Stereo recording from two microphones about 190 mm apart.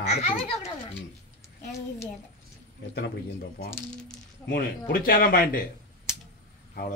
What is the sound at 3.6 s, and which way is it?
Speech, 5° left (ahead or behind).